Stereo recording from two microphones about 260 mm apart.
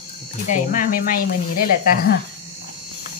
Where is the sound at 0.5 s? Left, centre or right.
Left.